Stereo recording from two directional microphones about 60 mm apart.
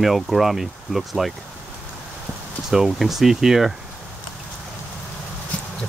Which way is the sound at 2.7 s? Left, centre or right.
Centre.